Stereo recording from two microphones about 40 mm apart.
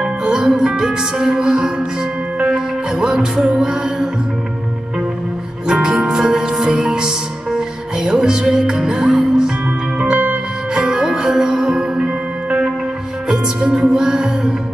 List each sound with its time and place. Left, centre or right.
0.0 s music: centre
5.7 s music: centre
13.7 s music: right